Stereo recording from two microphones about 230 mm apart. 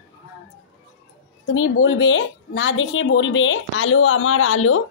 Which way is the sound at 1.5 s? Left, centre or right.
Left.